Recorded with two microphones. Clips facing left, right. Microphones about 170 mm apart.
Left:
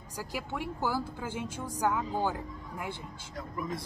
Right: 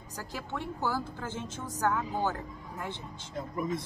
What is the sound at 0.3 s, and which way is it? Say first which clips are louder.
Speech: left 1 dB; 10° left (ahead or behind).